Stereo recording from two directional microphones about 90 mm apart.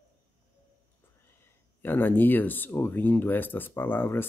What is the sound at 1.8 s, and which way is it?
Speech, 20° left (ahead or behind).